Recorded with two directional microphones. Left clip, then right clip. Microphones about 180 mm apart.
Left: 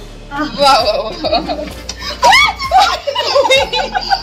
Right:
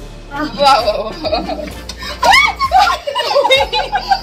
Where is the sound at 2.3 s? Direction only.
25° left (ahead or behind).